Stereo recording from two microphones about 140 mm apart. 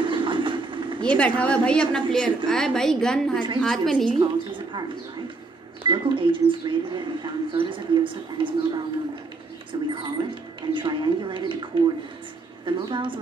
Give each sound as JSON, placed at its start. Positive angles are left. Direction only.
{"t": 0.0, "sound": "vehicle", "side_deg": -35}
{"t": 1.0, "sound": "a woman's voice", "side_deg": 10}
{"t": 4.2, "sound": "a woman's voice", "side_deg": -35}
{"t": 5.9, "sound": "speech", "side_deg": -35}